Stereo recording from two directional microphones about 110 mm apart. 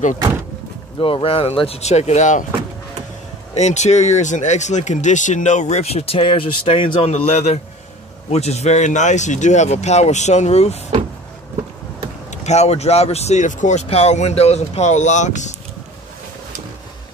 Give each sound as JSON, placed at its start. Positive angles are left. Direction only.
{"t": 0.9, "sound": "speech", "side_deg": 50}
{"t": 3.5, "sound": "speech", "side_deg": 90}
{"t": 7.1, "sound": "a man's voice", "side_deg": 75}
{"t": 8.3, "sound": "speech", "side_deg": 85}
{"t": 12.3, "sound": "speech", "side_deg": 90}